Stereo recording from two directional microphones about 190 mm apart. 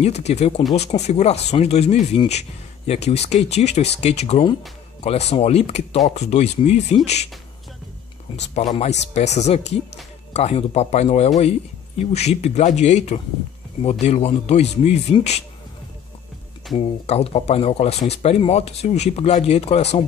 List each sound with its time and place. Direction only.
0.0 s speech: 35° left (ahead or behind)
8.5 s speech: 30° left (ahead or behind)
16.7 s speech: 30° left (ahead or behind)